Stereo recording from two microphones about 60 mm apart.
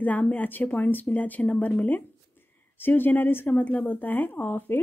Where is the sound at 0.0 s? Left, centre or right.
Left.